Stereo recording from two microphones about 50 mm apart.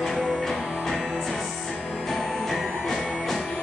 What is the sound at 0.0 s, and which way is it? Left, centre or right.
Music, centre.